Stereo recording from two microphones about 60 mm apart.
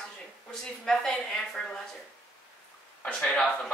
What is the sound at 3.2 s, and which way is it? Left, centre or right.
Speech, centre.